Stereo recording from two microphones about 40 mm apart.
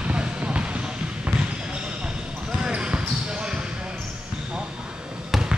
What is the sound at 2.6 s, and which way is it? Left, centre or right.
Basketball bounce, right.